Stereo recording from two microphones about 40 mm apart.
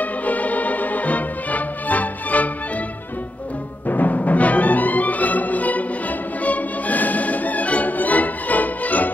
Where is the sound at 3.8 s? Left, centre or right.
Left.